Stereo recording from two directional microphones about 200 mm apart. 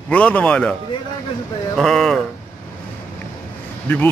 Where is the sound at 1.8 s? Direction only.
Centre (ahead or behind).